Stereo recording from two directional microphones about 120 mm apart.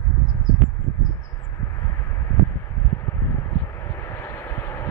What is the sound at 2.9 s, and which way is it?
Vehicle, 20° left (ahead or behind).